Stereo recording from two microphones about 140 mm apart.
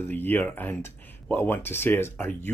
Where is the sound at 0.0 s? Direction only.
15° left (ahead or behind).